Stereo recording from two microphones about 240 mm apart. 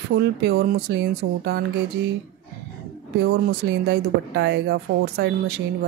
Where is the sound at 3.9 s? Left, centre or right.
Right.